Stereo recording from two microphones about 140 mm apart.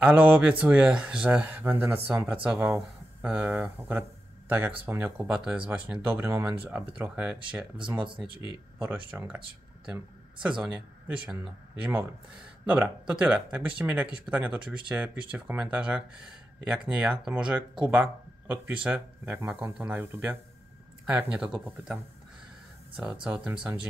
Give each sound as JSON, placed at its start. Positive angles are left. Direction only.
{"t": 0.0, "sound": "speech", "side_deg": -15}
{"t": 10.4, "sound": "speech", "side_deg": -5}
{"t": 23.2, "sound": "speech", "side_deg": -10}